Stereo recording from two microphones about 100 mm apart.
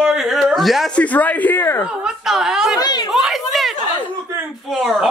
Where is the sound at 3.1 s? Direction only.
Centre (ahead or behind).